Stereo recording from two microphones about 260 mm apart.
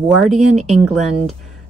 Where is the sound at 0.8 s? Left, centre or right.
Centre.